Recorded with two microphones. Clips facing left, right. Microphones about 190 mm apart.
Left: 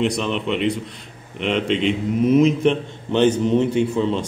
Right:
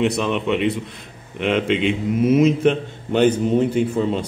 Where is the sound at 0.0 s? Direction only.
5° right (ahead or behind).